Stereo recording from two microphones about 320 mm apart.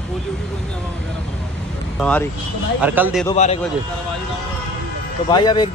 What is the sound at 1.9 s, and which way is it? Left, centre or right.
Speech, centre.